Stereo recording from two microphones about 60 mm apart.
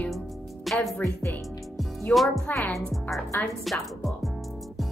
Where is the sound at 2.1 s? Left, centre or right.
Centre.